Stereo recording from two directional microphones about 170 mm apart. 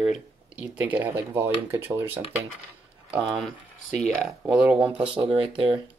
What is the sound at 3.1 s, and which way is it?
Speech, 5° right (ahead or behind).